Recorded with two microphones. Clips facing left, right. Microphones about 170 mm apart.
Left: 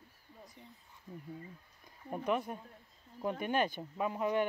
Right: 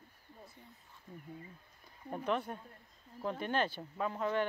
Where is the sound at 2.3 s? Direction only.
10° left (ahead or behind).